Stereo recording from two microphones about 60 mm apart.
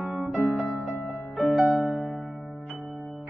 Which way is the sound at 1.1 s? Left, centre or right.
Centre.